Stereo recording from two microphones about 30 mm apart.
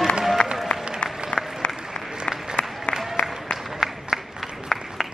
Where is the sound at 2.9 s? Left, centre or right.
Centre.